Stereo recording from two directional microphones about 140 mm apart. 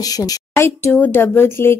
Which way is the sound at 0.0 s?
25° left (ahead or behind).